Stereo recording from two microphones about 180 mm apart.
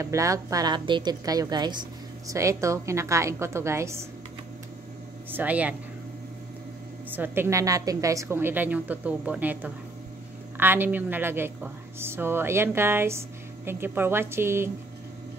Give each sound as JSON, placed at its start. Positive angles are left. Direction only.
{"t": 0.0, "sound": "a woman's voice", "side_deg": -15}
{"t": 5.3, "sound": "a woman's voice", "side_deg": -10}
{"t": 7.1, "sound": "a woman's voice", "side_deg": -10}